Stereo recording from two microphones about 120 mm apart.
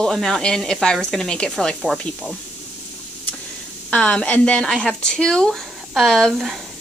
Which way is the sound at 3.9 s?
10° left (ahead or behind).